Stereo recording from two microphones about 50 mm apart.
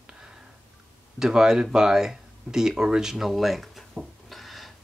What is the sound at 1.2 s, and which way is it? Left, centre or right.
Speech, centre.